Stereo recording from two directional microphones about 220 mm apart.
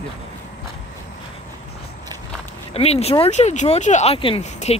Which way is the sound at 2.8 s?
30° left (ahead or behind).